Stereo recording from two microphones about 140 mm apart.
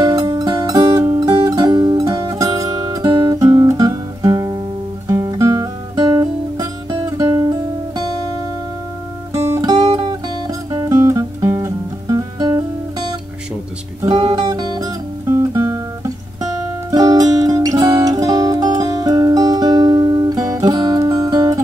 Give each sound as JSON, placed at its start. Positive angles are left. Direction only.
{"t": 0.0, "sound": "music", "side_deg": -30}
{"t": 3.3, "sound": "guitar", "side_deg": -25}
{"t": 9.3, "sound": "guitar", "side_deg": -25}
{"t": 9.9, "sound": "music", "side_deg": -30}
{"t": 14.1, "sound": "music", "side_deg": -30}
{"t": 15.5, "sound": "guitar", "side_deg": -20}
{"t": 16.9, "sound": "music", "side_deg": -25}